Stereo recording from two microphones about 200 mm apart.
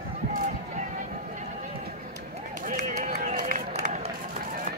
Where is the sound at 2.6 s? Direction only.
40° right (ahead or behind).